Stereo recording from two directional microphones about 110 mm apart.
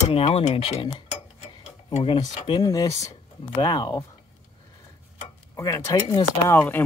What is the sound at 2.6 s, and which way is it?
Speech, 35° left (ahead or behind).